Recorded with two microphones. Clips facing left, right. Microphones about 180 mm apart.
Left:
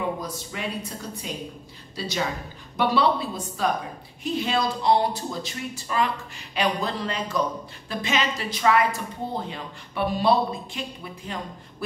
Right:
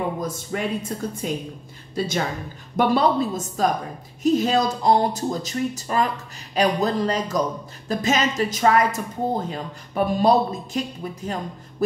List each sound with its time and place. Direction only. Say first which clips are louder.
0.2 s a woman's voice: right 6 dB; 50° right (ahead or behind)